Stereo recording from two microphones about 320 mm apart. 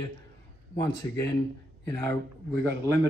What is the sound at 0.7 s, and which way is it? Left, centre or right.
Speech, centre.